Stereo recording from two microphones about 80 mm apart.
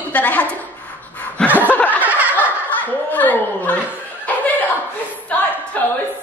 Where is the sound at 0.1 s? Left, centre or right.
Centre.